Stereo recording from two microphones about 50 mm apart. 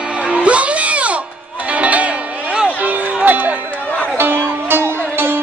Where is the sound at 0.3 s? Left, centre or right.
Right.